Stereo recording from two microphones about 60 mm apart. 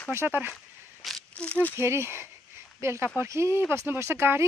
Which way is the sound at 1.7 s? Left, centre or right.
Right.